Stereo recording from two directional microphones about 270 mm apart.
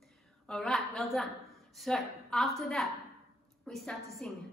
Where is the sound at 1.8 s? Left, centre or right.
Centre.